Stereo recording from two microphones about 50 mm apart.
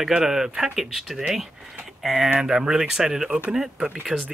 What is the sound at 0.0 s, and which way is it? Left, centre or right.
Speech, centre.